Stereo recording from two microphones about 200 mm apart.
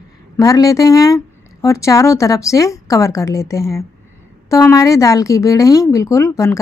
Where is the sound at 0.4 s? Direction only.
15° left (ahead or behind).